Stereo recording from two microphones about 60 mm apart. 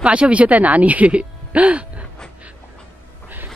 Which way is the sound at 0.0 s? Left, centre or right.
Centre.